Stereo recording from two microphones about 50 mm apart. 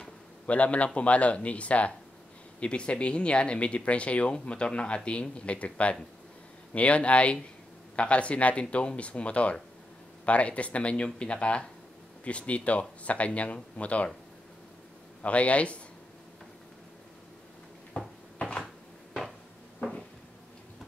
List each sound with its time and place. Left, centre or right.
0.5 s speech: left
15.2 s speech: left
17.9 s cupboard open or close: centre